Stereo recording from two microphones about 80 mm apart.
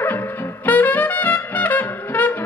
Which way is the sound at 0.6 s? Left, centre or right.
Left.